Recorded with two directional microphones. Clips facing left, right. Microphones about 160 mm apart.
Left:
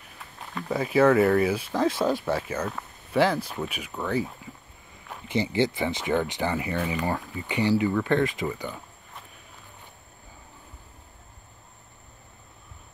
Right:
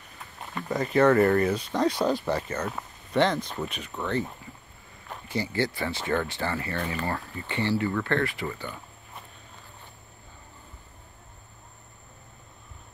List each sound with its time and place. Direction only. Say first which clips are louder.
0.6 s speech: left 1 dB; 5° left (ahead or behind)
5.3 s speech: left 4 dB; 20° left (ahead or behind)